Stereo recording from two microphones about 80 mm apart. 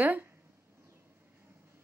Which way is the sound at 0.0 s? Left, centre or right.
Right.